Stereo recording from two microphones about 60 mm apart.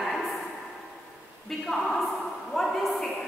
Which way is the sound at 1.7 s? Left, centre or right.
Centre.